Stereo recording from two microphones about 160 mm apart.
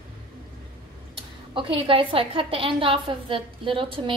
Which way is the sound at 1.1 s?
35° right (ahead or behind).